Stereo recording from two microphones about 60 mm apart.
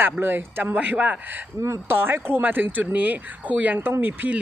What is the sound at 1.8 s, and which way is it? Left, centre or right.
A woman's voice, right.